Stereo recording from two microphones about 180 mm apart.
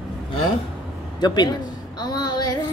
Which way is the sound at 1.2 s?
25° left (ahead or behind).